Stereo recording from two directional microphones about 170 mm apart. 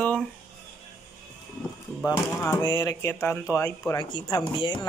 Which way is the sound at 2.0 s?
15° left (ahead or behind).